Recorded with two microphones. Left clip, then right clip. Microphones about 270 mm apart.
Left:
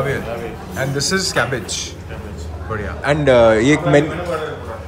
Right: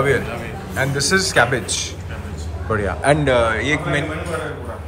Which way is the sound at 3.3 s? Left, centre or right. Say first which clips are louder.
Left 6 dB; left.